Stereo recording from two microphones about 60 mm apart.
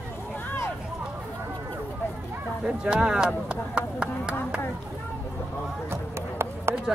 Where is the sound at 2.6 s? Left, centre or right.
Centre.